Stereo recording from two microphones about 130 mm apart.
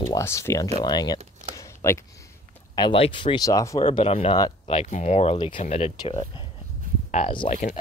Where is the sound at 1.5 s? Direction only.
20° left (ahead or behind).